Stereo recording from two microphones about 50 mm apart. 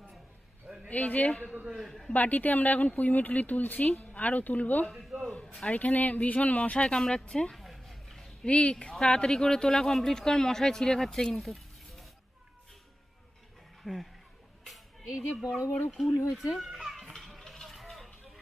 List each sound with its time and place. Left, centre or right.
0.8 s speech: left
1.2 s speech: left
1.8 s a man's voice: centre
2.1 s speech: left
6.9 s speech: centre
7.5 s a sound: centre
8.5 s speech: left
11.4 s a sound: centre
13.9 s a man's voice: centre
15.0 s speech: centre
16.3 s children playing: centre
17.1 s a sound: centre